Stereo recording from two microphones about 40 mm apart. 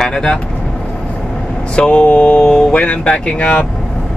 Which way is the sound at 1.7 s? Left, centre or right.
Left.